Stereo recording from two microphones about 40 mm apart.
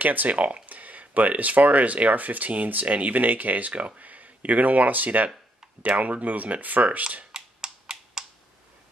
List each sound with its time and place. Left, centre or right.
0.0 s speech: right
7.3 s computer keyboard: centre